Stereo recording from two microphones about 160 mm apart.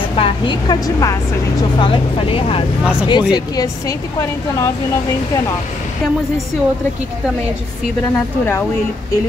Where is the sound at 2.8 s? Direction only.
5° right (ahead or behind).